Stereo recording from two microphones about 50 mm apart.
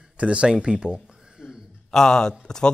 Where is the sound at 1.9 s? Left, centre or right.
Centre.